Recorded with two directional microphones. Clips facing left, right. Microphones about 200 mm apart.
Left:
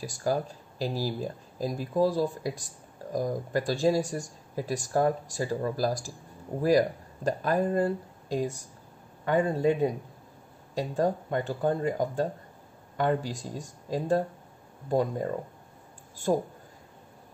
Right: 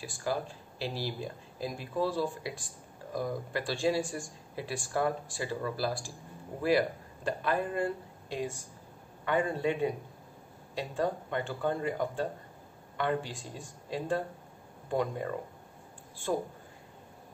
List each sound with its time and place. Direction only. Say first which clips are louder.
0.0 s speech: left 5 dB; 40° left (ahead or behind)
7.2 s speech: left 5 dB; 40° left (ahead or behind)
16.3 s speech: left 5 dB; 40° left (ahead or behind)